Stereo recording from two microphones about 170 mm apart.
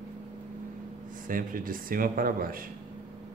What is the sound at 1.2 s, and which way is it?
Speech, 55° right (ahead or behind).